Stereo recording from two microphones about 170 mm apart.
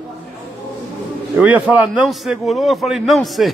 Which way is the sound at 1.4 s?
10° right (ahead or behind).